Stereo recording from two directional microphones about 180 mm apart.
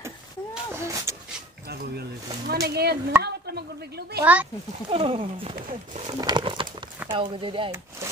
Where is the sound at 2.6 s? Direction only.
60° right (ahead or behind).